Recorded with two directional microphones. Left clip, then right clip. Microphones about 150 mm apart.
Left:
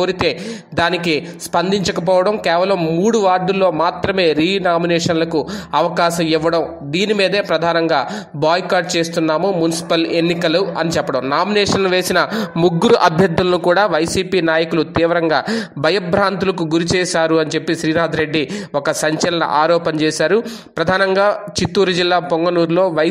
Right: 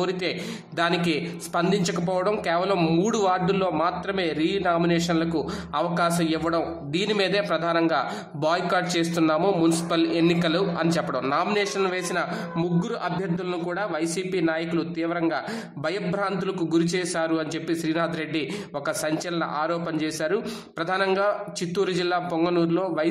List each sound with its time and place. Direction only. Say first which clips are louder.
0.7 s a man's voice: left 8 dB; 35° left (ahead or behind)
2.8 s a man's voice: left 8 dB; 20° left (ahead or behind); by 23.0 s 40° left (ahead or behind)